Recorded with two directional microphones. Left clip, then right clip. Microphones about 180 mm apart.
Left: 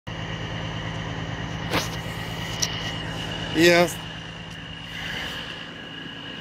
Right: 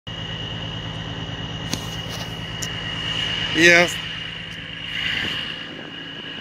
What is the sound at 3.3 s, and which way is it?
Vehicle, 45° left (ahead or behind).